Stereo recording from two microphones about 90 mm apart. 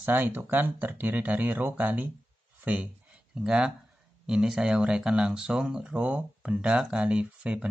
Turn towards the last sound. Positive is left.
turn(degrees=-10)  # may be behind; listen again after turning